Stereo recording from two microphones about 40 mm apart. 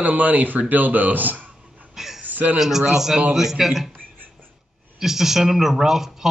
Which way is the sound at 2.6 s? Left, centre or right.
Centre.